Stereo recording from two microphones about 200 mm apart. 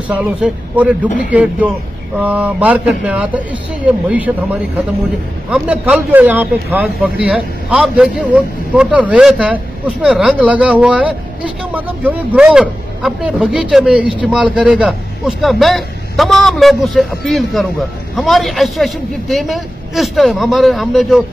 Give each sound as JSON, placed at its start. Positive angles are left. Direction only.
{"t": 0.1, "sound": "a man's voice", "side_deg": -5}
{"t": 5.5, "sound": "a man's voice", "side_deg": -5}